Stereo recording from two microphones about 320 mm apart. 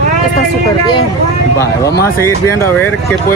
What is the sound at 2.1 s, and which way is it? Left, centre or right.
Speech, centre.